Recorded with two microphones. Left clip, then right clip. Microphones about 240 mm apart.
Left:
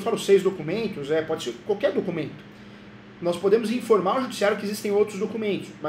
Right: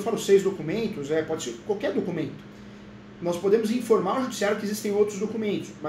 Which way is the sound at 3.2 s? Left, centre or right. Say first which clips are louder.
Left 1 dB; centre.